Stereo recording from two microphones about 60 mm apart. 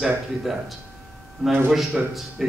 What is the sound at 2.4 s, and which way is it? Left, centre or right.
Speech, centre.